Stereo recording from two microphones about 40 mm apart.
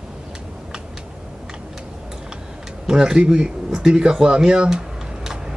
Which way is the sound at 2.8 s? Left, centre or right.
Centre.